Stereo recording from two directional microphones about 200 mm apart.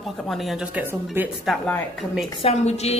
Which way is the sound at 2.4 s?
35° left (ahead or behind).